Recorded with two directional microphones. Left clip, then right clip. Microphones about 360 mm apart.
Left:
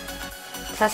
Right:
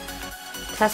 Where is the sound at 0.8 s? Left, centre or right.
Centre.